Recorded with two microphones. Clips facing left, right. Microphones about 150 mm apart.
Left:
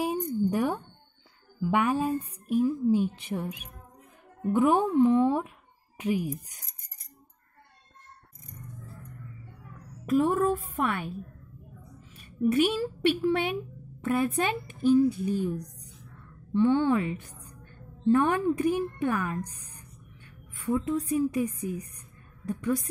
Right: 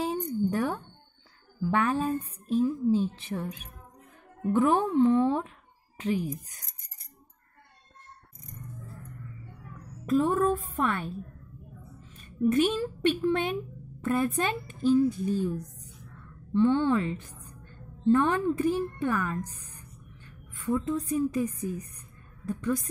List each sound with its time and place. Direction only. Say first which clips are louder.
0.0 s a sound: left 1 dB; 15° left (ahead or behind)
1.6 s speech: left 1 dB; 15° left (ahead or behind)
10.0 s speech: even; 10° left (ahead or behind)
12.2 s a woman's voice: even; 10° left (ahead or behind)
16.5 s speech: even; 15° left (ahead or behind)
20.5 s speech: left 1 dB; 10° left (ahead or behind)
21.5 s a woman's voice: even; 35° right (ahead or behind)
22.5 s speech: left 1 dB; 10° left (ahead or behind)